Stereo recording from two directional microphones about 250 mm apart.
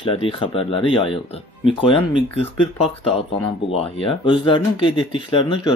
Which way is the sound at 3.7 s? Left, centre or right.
Centre.